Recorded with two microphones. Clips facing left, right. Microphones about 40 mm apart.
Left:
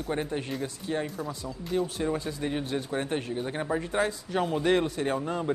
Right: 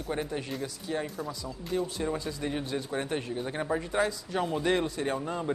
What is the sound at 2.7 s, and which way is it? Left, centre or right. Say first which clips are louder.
Speech: left 2 dB; centre.